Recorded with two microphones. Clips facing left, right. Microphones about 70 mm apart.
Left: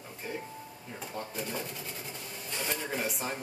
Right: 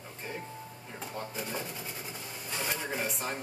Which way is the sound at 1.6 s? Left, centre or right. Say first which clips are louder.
Even; centre.